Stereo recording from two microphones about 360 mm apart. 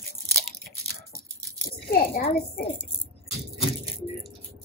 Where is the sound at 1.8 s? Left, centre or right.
Left.